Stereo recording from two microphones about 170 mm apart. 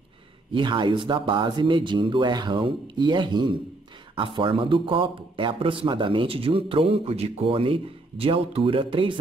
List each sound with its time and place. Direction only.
0.5 s a man's voice: 30° right (ahead or behind)